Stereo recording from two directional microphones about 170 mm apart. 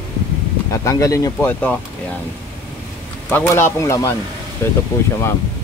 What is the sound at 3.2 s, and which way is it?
Speech, 10° left (ahead or behind).